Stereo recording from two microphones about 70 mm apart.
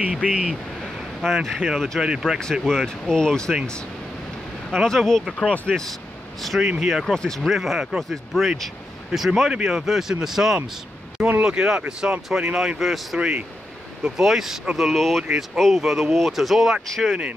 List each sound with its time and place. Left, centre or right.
0.1 s speech: centre
1.2 s speech: centre
2.4 s speech: centre
4.6 s speech: centre
5.7 s speech: centre
6.4 s speech: centre
13.2 s speech: right
14.0 s speech: centre
17.1 s speech: centre